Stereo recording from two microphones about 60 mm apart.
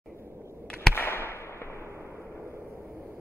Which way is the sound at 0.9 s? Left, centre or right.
Left.